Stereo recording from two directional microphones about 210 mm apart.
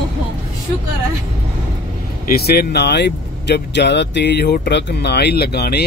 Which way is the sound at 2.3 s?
45° left (ahead or behind).